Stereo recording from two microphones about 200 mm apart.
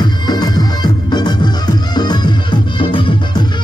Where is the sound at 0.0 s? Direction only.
20° left (ahead or behind).